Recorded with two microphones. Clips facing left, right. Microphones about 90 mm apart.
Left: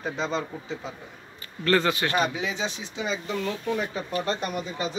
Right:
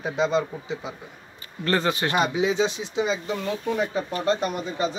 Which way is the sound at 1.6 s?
25° right (ahead or behind).